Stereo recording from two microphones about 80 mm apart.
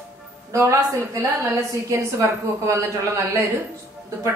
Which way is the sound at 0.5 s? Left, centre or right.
Right.